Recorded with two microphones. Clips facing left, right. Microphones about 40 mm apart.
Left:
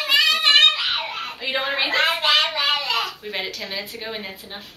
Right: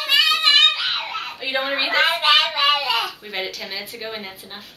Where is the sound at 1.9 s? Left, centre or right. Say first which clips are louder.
Right 3 dB; centre.